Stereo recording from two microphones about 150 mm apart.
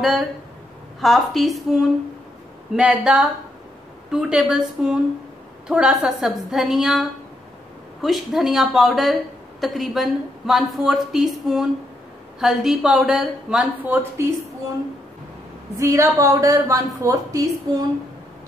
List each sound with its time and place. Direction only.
1.0 s a woman's voice: centre (ahead or behind)
15.8 s a woman's voice: 20° right (ahead or behind)